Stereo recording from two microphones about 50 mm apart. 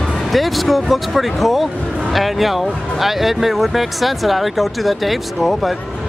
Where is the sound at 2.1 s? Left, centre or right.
Centre.